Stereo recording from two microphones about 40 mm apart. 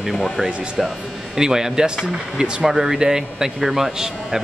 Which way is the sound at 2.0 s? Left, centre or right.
Right.